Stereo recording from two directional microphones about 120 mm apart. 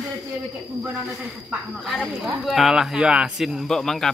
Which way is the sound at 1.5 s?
Centre (ahead or behind).